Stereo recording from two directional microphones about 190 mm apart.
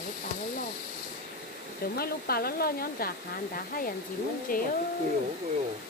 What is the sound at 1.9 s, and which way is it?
Speech, 55° left (ahead or behind).